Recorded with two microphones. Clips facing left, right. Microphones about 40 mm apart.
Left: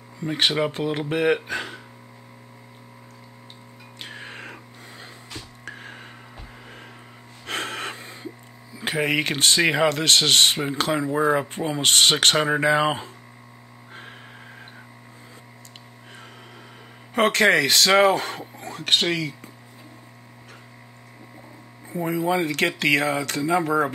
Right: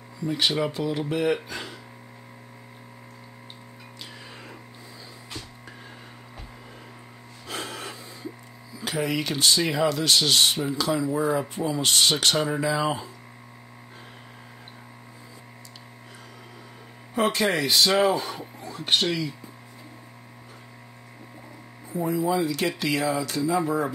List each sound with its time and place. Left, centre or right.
0.2 s speech: left
4.0 s music: left
7.4 s gasp: left
8.7 s speech: left
17.1 s speech: left
18.6 s music: left
18.9 s speech: left
21.8 s speech: left